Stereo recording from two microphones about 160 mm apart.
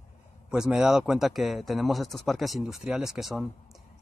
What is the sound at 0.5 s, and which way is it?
Speech, 5° right (ahead or behind).